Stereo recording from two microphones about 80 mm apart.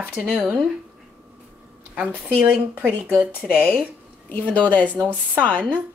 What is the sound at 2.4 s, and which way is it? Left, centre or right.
Speech, centre.